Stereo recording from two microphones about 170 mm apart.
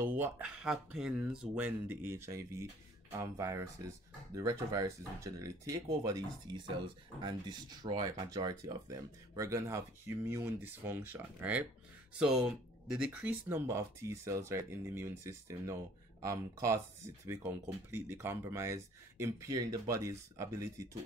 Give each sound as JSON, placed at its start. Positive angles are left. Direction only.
{"t": 0.0, "sound": "speech", "side_deg": -10}